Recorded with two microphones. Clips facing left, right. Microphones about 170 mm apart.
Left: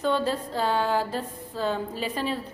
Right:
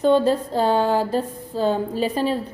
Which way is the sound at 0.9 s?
40° right (ahead or behind).